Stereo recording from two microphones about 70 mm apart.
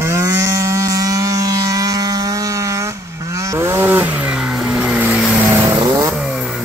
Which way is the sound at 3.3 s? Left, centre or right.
Right.